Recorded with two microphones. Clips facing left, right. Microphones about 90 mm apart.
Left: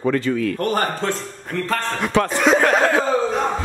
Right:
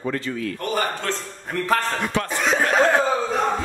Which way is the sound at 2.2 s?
70° left (ahead or behind).